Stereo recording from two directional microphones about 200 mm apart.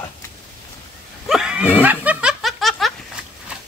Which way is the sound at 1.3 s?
5° right (ahead or behind).